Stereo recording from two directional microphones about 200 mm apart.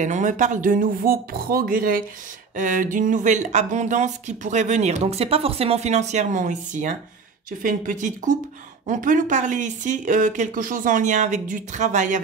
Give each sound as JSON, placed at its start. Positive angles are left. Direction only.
{"t": 0.0, "sound": "speech", "side_deg": -40}